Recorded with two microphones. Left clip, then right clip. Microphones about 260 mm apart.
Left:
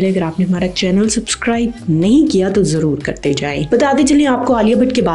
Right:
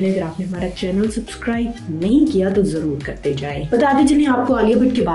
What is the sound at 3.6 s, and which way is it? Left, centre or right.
Speech, left.